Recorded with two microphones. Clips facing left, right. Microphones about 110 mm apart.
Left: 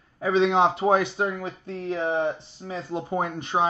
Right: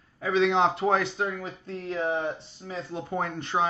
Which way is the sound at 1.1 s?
30° left (ahead or behind).